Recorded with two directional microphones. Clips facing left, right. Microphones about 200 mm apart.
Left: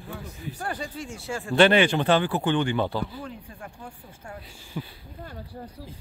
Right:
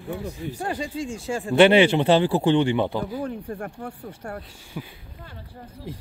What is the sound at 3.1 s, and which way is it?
Speech, 55° right (ahead or behind).